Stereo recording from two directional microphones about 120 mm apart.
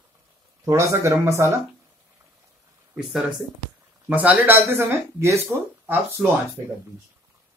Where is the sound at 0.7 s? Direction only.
25° right (ahead or behind).